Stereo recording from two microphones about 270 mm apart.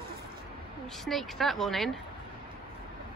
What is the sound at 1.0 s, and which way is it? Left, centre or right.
Speech, centre.